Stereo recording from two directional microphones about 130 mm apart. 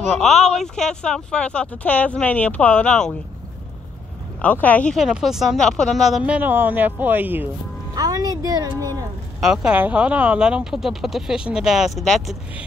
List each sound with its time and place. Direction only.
0.1 s speech: centre (ahead or behind)
4.4 s speech: 10° left (ahead or behind)
4.9 s speech: 5° right (ahead or behind)
7.9 s speech: 30° right (ahead or behind)
9.4 s speech: 5° right (ahead or behind)